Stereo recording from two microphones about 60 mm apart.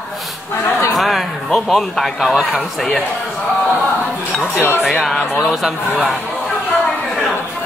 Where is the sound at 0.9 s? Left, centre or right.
Centre.